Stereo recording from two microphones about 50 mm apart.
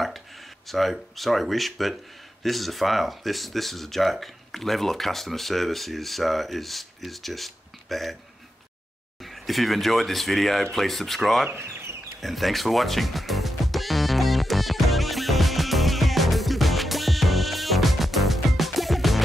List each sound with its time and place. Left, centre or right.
0.7 s speech: centre
9.2 s speech: centre
11.5 s bird: right
12.2 s music: centre